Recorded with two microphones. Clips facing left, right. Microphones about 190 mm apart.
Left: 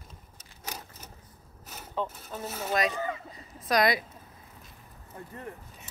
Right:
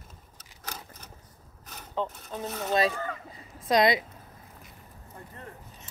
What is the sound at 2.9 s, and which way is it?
Speech, 10° left (ahead or behind).